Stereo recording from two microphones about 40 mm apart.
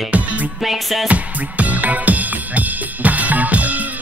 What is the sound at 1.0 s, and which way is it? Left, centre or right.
Music, right.